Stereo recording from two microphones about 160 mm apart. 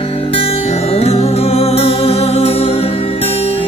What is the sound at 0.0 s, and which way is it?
Music, 35° left (ahead or behind).